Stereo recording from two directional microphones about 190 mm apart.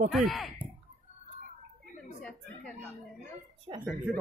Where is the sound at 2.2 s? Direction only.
5° left (ahead or behind).